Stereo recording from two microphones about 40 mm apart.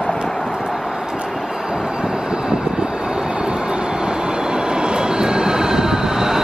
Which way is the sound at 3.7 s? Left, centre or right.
Right.